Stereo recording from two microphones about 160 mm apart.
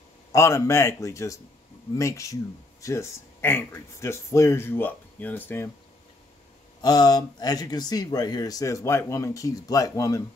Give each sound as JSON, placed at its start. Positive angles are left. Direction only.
{"t": 0.3, "sound": "speech", "side_deg": 20}
{"t": 6.8, "sound": "speech", "side_deg": 25}